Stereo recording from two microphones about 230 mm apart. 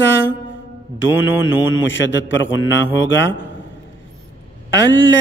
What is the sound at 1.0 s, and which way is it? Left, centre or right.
Mantra, left.